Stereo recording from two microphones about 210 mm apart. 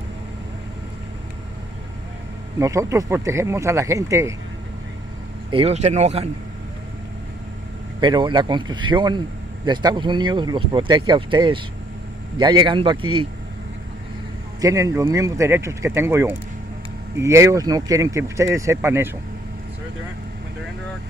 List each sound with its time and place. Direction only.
2.6 s speech: 15° right (ahead or behind)
5.5 s speech: 30° right (ahead or behind)
8.0 s speech: 20° right (ahead or behind)
14.6 s speech: 15° right (ahead or behind)